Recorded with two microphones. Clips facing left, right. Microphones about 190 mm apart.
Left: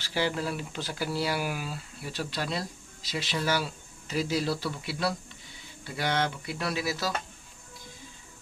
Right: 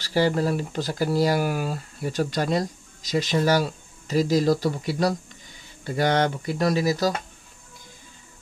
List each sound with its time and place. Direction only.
0.0 s speech: 40° right (ahead or behind)